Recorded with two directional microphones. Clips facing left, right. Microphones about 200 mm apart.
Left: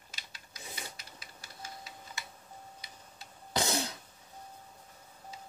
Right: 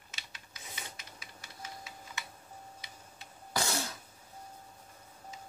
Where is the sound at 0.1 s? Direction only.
35° left (ahead or behind).